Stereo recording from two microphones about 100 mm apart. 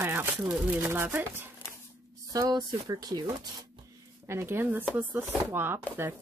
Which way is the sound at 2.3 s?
40° right (ahead or behind).